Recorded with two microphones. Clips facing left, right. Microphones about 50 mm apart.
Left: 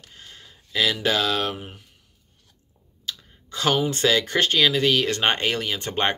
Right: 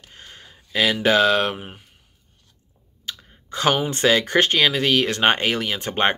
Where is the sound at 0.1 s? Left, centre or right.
Centre.